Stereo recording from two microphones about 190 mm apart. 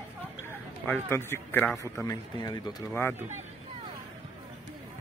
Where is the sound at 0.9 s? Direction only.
10° left (ahead or behind).